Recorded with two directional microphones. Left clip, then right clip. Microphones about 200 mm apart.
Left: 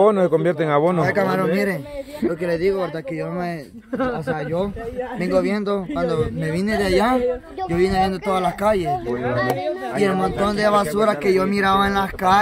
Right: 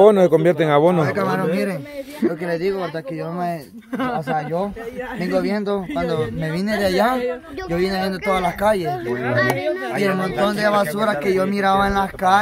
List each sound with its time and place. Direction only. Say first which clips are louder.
0.0 s speech: right 4 dB; 25° right (ahead or behind)
1.0 s speech: left 1 dB; 15° left (ahead or behind)
2.2 s speech: left 1 dB; 10° right (ahead or behind)
4.0 s speech: right 1 dB; 70° right (ahead or behind)
5.2 s speech: left 1 dB; 5° right (ahead or behind)
8.9 s speech: right 1 dB; 50° right (ahead or behind)
9.9 s speech: left 2 dB; 10° right (ahead or behind); by 12.4 s 5° left (ahead or behind)